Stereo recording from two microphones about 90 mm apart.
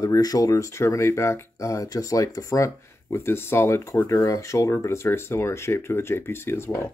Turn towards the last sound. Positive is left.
turn(degrees=30)  # may be behind; listen again after turning